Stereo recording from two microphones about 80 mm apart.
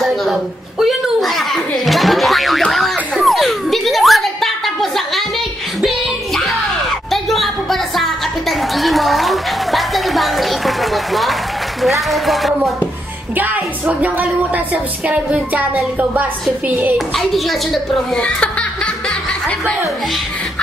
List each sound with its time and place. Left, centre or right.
0.0 s a sound: centre
7.1 s music: centre
11.8 s speech: centre
13.4 s a woman's voice: centre
17.1 s speech: centre
18.1 s laughter: centre